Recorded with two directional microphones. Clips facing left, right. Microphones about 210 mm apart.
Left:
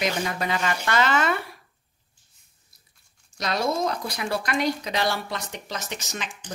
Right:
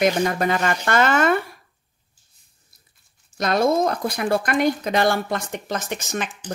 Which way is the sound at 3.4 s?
50° right (ahead or behind).